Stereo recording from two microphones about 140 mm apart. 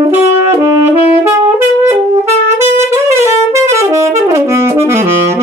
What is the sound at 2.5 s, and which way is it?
Saxophone, 20° right (ahead or behind).